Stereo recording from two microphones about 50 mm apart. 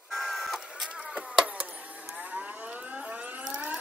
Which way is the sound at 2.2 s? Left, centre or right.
Right.